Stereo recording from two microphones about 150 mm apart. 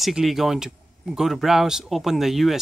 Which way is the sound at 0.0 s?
Centre (ahead or behind).